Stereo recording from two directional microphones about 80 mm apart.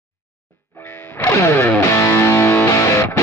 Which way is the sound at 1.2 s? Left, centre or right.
Left.